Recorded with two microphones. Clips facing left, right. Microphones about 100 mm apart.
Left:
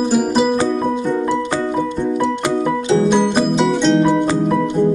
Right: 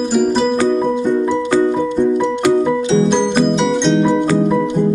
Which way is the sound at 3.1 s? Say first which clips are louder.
Right 1 dB; 5° left (ahead or behind).